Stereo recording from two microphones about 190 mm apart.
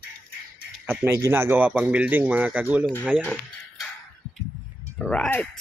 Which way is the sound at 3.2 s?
5° left (ahead or behind).